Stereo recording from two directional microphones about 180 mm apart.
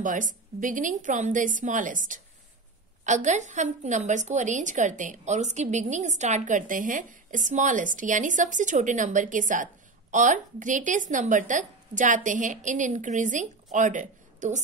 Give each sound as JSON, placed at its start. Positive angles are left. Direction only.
{"t": 0.0, "sound": "a woman's voice", "side_deg": -45}